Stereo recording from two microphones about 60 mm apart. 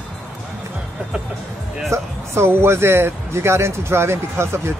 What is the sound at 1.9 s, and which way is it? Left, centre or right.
Speech, right.